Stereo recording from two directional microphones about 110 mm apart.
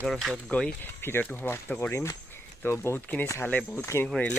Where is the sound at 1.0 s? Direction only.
20° left (ahead or behind).